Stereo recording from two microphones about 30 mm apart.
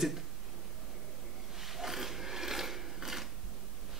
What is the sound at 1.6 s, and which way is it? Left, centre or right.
Mechanisms, centre.